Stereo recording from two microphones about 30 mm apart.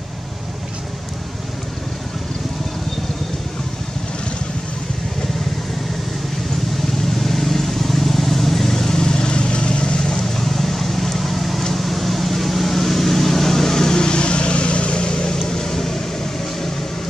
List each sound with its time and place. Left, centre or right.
7.2 s vehicle: centre; by 10.1 s left
10.1 s vehicle: centre